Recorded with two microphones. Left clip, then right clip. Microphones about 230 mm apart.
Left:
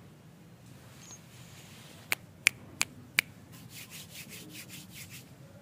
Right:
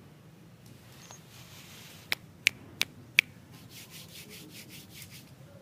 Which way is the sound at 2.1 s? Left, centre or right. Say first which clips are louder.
Even; left.